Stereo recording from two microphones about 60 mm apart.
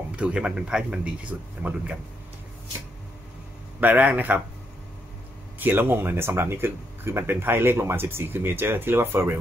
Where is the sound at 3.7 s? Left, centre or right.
Right.